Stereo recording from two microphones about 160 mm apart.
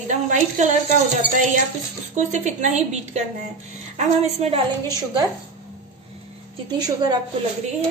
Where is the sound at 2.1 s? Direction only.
50° right (ahead or behind).